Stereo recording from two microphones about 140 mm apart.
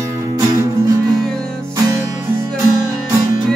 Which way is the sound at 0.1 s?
25° right (ahead or behind).